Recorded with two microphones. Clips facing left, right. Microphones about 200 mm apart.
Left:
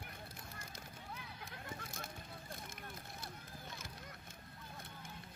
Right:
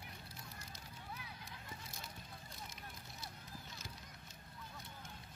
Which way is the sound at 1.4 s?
50° left (ahead or behind).